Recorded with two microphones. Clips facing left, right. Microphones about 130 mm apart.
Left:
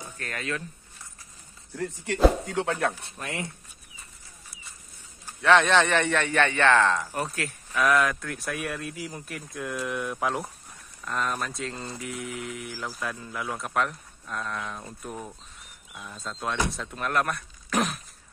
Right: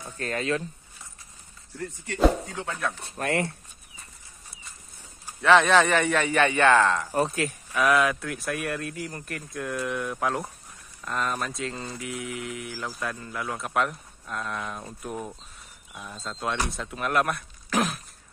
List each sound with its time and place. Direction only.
0.2 s speech: 30° right (ahead or behind)
2.1 s speech: centre (ahead or behind)
2.5 s speech: 80° left
3.2 s speech: 60° right (ahead or behind)
5.4 s a man's voice: centre (ahead or behind)
7.2 s speech: 20° right (ahead or behind)
7.7 s speech: 5° right (ahead or behind)